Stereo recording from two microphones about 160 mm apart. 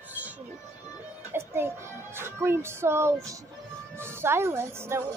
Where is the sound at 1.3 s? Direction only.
15° right (ahead or behind).